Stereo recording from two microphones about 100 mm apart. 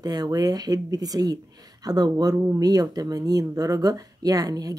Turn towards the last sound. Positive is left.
turn(degrees=-40)  # may be behind; listen again after turning